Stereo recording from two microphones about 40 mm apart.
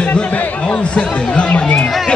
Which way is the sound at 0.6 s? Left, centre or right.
Left.